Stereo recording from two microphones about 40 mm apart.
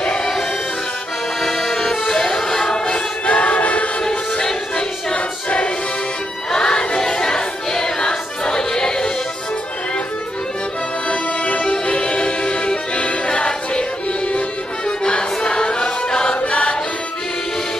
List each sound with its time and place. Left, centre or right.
0.2 s music: centre
1.4 s accordion: centre
2.8 s music: left
4.4 s music: centre
5.1 s music: left
6.5 s choir: centre
11.1 s music: left